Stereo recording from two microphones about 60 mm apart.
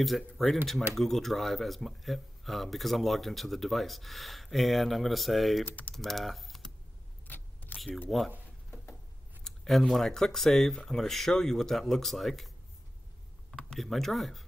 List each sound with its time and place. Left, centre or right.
0.0 s speech: centre
5.7 s speech: left
5.9 s speech: centre
7.2 s vehicle: left
8.1 s speech: centre
9.4 s speech: centre
13.6 s speech: centre